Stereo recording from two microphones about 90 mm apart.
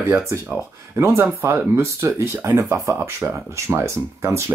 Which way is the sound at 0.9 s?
30° right (ahead or behind).